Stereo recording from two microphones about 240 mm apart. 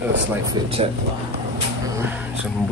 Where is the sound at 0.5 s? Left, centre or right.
Right.